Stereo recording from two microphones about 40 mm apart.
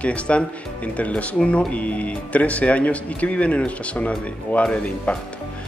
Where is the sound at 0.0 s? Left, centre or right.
Left.